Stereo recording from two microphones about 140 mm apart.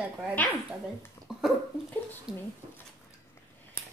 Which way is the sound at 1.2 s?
15° left (ahead or behind).